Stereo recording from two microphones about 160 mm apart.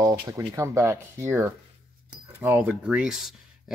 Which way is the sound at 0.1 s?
15° right (ahead or behind).